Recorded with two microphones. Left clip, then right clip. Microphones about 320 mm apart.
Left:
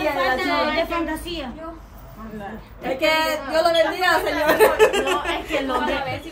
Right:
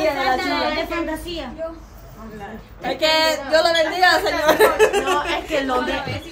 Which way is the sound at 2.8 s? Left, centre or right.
Centre.